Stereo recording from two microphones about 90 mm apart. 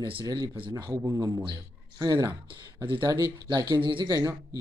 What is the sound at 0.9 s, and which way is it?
A man's voice, 40° right (ahead or behind).